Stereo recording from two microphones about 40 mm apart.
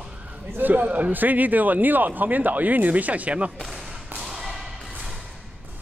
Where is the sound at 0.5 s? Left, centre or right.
Right.